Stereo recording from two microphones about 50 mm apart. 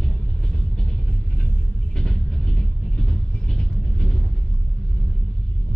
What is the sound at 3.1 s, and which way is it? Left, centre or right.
Train, centre.